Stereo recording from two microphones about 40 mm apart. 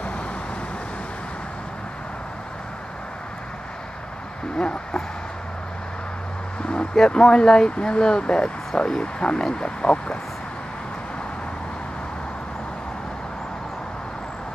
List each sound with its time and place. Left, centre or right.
4.6 s speech: left
6.6 s a sound: left
7.1 s speech: left